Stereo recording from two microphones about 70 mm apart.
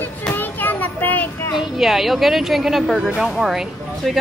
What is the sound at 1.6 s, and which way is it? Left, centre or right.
Speech, centre.